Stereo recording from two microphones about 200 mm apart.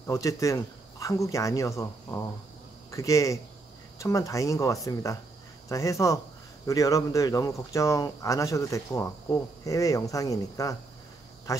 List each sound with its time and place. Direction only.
0.0 s speech: 15° left (ahead or behind)